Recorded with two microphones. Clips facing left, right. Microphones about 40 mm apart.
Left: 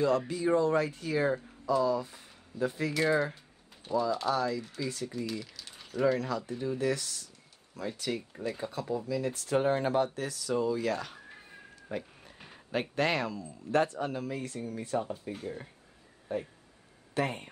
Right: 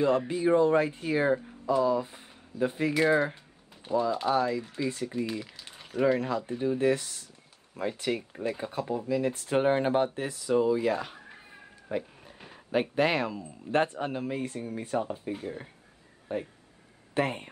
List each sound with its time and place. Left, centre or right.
0.3 s speech: right